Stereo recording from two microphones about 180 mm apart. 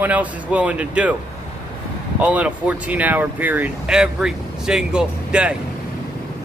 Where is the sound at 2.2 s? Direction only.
5° right (ahead or behind).